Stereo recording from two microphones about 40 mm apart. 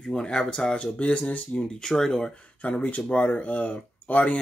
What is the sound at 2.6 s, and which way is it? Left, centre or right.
Speech, left.